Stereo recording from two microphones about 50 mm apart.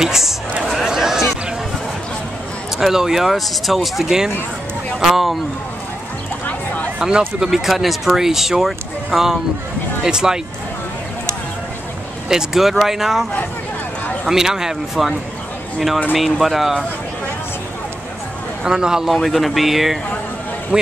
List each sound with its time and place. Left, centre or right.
0.0 s a sound: centre
2.8 s speech: centre
6.4 s a sound: left
7.0 s speech: centre
7.4 s speech: centre
12.3 s speech: centre
16.3 s speech: centre
18.6 s speech: centre
19.2 s speech: centre
20.7 s a man's voice: centre